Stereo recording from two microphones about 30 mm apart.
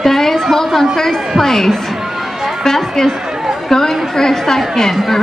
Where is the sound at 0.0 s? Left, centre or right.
Centre.